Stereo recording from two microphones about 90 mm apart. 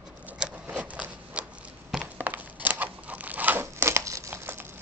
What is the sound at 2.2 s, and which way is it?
Scissors, 20° right (ahead or behind).